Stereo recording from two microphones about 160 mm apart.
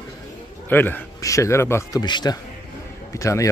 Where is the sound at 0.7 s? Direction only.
10° left (ahead or behind).